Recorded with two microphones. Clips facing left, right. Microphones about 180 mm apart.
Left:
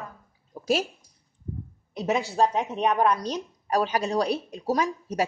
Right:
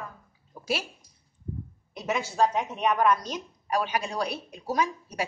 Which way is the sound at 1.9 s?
35° left (ahead or behind).